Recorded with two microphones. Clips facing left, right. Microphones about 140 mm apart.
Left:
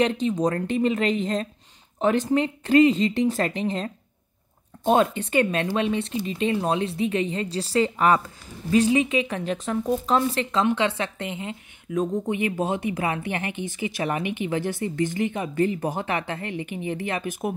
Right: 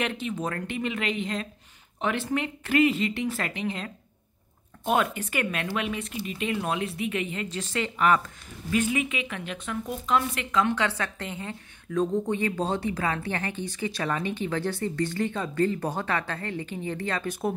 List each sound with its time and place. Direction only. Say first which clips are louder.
0.0 s speech: left 8 dB; 30° left (ahead or behind); by 17.6 s 15° left (ahead or behind)